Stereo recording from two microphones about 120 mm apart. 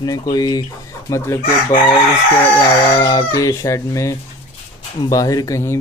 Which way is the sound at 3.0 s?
35° left (ahead or behind).